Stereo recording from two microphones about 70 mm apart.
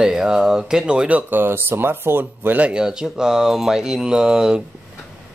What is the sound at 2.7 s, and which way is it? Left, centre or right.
A man's voice, centre.